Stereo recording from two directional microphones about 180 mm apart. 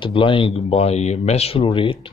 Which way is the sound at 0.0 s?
30° left (ahead or behind).